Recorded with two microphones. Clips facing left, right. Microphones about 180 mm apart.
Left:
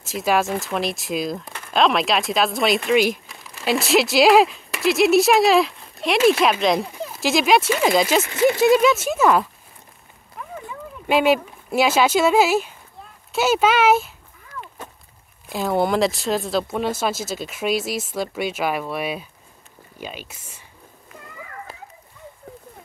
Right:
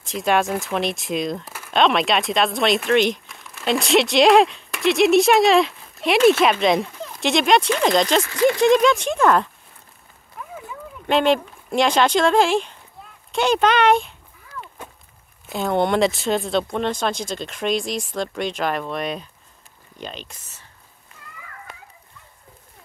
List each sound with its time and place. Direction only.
0.0 s speech: 5° left (ahead or behind)
6.9 s a sound: 15° left (ahead or behind)
7.2 s speech: centre (ahead or behind)
8.2 s speech: 20° left (ahead or behind)
8.5 s speech: 5° left (ahead or behind)
10.4 s a sound: 5° right (ahead or behind)
11.1 s speech: 10° left (ahead or behind)
14.8 s walk: 10° right (ahead or behind)
15.4 s speech: centre (ahead or behind)